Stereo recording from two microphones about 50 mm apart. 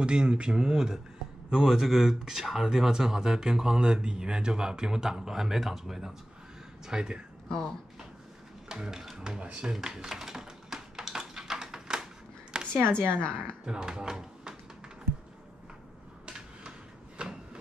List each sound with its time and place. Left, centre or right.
0.0 s speech: centre
7.4 s speech: centre
8.6 s music: centre
9.4 s a sound: centre
13.1 s a woman's voice: left
13.7 s speech: centre
16.3 s a sound: centre